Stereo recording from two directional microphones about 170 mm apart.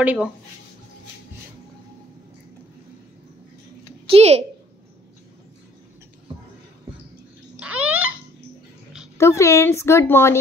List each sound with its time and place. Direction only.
0.0 s speech: 10° right (ahead or behind)
4.1 s a woman's voice: 35° right (ahead or behind)
7.5 s babbling: 10° right (ahead or behind)
9.2 s speech: 15° left (ahead or behind)